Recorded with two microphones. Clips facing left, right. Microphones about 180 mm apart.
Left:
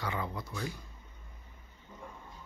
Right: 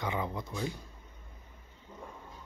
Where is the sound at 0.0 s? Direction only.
20° right (ahead or behind).